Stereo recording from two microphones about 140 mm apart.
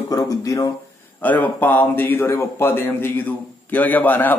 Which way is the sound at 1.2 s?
15° left (ahead or behind).